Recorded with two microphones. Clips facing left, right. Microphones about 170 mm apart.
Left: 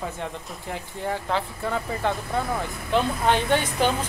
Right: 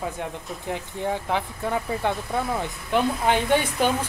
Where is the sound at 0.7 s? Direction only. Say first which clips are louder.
Right 2 dB; 15° right (ahead or behind).